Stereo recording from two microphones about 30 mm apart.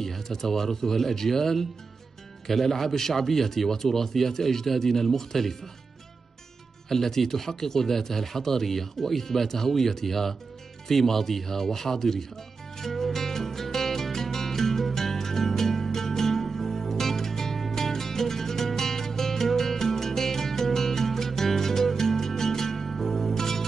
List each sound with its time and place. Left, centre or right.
0.0 s speech: centre
6.9 s speech: centre
12.7 s music: centre